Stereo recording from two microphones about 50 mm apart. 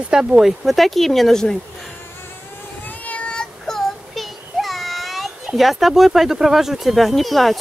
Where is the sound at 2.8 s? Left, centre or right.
Left.